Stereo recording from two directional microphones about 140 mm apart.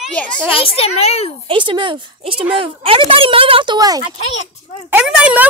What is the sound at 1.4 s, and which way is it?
Speech, 35° right (ahead or behind).